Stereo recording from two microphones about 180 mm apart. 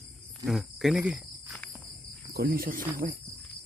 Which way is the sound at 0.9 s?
5° right (ahead or behind).